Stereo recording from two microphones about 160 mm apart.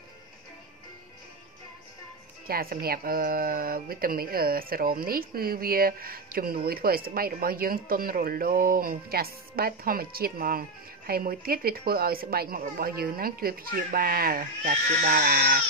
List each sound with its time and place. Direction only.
2.4 s speech: 65° right (ahead or behind)